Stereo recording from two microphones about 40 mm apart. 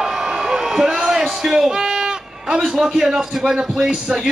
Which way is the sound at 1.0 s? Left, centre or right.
Centre.